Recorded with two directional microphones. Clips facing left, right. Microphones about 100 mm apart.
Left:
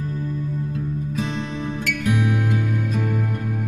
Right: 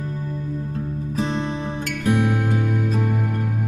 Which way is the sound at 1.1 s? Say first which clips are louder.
Right 6 dB; 35° right (ahead or behind).